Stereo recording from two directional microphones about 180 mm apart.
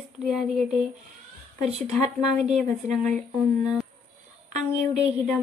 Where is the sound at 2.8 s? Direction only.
40° right (ahead or behind).